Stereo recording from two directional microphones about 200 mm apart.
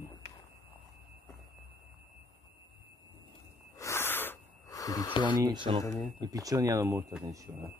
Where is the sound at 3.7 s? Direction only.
15° left (ahead or behind).